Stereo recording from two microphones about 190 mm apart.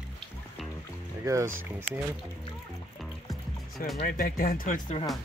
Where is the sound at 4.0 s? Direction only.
50° left (ahead or behind).